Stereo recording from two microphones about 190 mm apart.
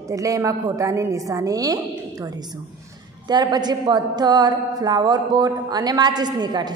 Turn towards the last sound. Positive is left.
turn(degrees=-20)  # may be behind; listen again after turning